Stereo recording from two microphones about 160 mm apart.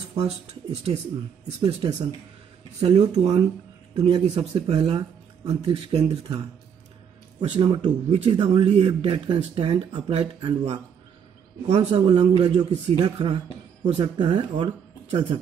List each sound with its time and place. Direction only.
0.2 s a man's voice: 40° right (ahead or behind)
1.6 s speech: 30° right (ahead or behind)
3.0 s speech: 25° right (ahead or behind)
4.0 s a man's voice: 35° right (ahead or behind)
15.0 s speech: 40° right (ahead or behind)